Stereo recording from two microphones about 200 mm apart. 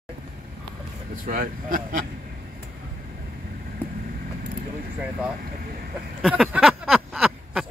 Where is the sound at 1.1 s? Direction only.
45° right (ahead or behind).